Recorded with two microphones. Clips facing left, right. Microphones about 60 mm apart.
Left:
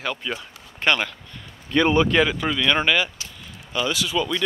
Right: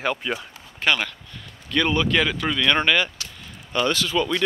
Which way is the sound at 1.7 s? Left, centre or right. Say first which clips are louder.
Left 3 dB; left.